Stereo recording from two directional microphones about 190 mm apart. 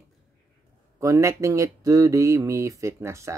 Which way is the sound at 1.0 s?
15° right (ahead or behind).